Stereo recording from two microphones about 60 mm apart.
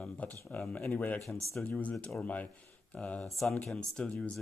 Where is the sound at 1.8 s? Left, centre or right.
Left.